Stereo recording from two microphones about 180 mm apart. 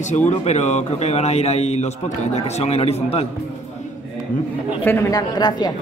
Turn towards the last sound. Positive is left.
turn(degrees=25)  # may be behind; listen again after turning